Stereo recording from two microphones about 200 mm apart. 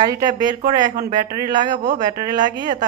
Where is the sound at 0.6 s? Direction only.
40° right (ahead or behind).